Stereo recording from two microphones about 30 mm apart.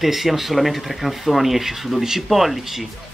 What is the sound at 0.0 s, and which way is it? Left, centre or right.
Speech, centre.